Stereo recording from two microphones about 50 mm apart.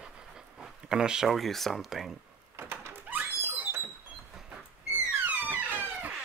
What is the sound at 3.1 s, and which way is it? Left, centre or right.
Thunk, right.